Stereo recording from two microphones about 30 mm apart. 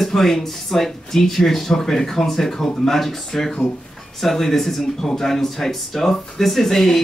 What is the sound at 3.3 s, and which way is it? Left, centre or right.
Speech, centre.